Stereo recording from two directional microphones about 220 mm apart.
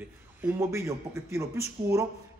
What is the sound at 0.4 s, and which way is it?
A man's voice, 10° right (ahead or behind).